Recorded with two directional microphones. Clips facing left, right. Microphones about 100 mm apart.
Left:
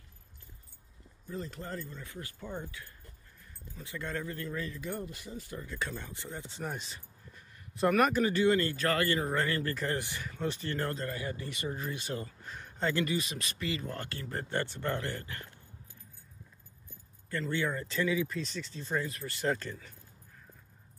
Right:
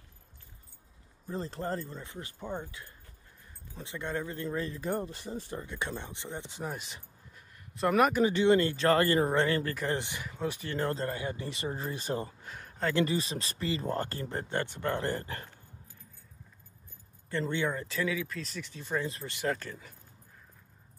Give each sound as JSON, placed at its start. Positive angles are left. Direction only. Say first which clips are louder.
{"t": 1.2, "sound": "speech", "louder": "right 5 dB", "side_deg": -35}
{"t": 6.5, "sound": "speech", "louder": "left 1 dB", "side_deg": -5}
{"t": 8.0, "sound": "speech", "louder": "right 3 dB", "side_deg": -15}
{"t": 9.3, "sound": "speech", "louder": "right 3 dB", "side_deg": -20}
{"t": 11.0, "sound": "speech", "louder": "right 3 dB", "side_deg": -30}
{"t": 12.4, "sound": "a sound", "louder": "left 2 dB", "side_deg": -5}
{"t": 12.9, "sound": "speech", "louder": "right 3 dB", "side_deg": -30}
{"t": 14.3, "sound": "speech", "louder": "left 2 dB", "side_deg": -10}
{"t": 15.0, "sound": "speech", "louder": "right 5 dB", "side_deg": -35}
{"t": 17.3, "sound": "speech", "louder": "right 2 dB", "side_deg": -20}
{"t": 18.6, "sound": "speech", "louder": "even", "side_deg": -15}
{"t": 19.0, "sound": "speech", "louder": "right 2 dB", "side_deg": -25}
{"t": 19.4, "sound": "speech", "louder": "left 1 dB", "side_deg": 0}